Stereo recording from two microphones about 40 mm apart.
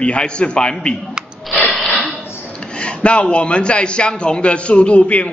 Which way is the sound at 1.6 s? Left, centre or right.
Centre.